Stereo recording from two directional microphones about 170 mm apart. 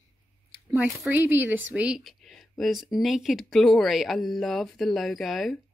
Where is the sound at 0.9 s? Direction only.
10° right (ahead or behind).